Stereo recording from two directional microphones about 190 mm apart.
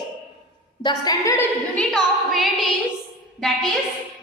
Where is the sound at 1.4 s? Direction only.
5° left (ahead or behind).